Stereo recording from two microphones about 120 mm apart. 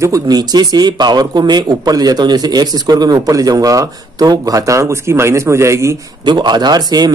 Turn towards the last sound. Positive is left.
turn(degrees=-35)  # may be behind; listen again after turning